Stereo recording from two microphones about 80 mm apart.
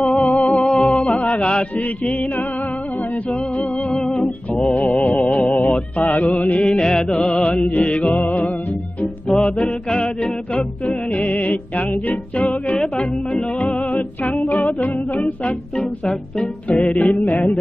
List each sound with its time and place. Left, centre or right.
0.0 s music: centre
1.3 s music: centre
4.0 s music: centre; by 8.5 s left
9.0 s music: centre
14.4 s a capella: centre
14.7 s music: centre
15.8 s music: centre
16.6 s music: centre